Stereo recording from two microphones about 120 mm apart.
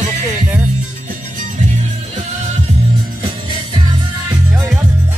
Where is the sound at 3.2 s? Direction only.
45° right (ahead or behind).